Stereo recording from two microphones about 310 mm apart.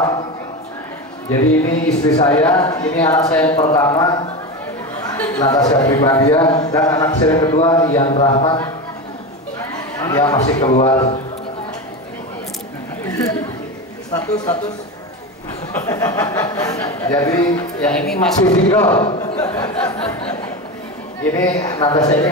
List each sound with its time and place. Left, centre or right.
2.0 s a man's voice: centre
9.6 s a man's voice: centre
13.1 s a woman's voice: centre
15.8 s a man's voice: centre
18.5 s a man's voice: left
21.2 s a man's voice: centre